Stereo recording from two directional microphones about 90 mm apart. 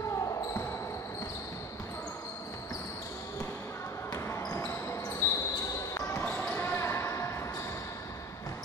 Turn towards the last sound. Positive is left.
turn(degrees=30)  # may be behind; listen again after turning